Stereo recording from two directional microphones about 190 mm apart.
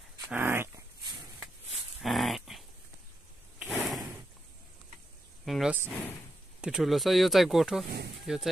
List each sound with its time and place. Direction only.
0.3 s dog: 10° right (ahead or behind)
2.0 s dog: centre (ahead or behind)
3.5 s a sound: 5° right (ahead or behind)
5.4 s a sound: centre (ahead or behind)
5.9 s speech: 10° left (ahead or behind)
6.6 s speech: centre (ahead or behind)